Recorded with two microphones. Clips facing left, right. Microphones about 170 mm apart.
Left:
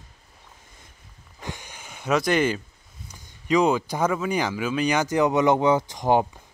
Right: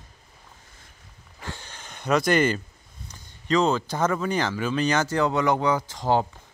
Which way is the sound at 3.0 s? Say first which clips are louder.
Left 1 dB; 10° left (ahead or behind).